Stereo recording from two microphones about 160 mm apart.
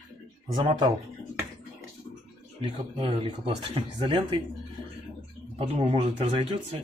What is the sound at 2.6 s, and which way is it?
Speech, 35° right (ahead or behind).